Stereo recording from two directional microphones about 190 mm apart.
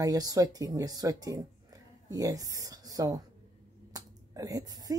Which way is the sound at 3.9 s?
20° right (ahead or behind).